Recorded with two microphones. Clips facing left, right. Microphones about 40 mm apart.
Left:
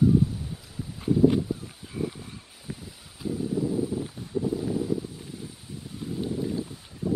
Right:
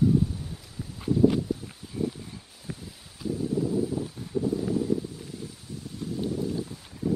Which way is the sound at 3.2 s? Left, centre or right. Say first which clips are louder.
Even; centre.